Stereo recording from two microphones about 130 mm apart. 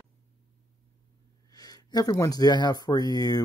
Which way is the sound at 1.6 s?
30° left (ahead or behind).